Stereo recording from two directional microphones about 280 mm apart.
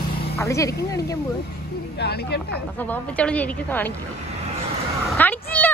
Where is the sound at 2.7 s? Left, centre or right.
Centre.